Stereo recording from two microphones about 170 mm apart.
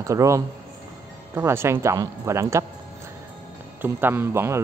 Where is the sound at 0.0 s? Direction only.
20° right (ahead or behind).